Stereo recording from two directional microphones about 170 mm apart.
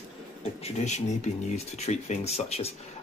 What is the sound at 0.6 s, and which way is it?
Speech, 40° left (ahead or behind).